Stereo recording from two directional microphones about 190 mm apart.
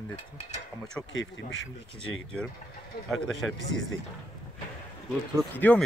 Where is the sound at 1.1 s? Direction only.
75° left (ahead or behind).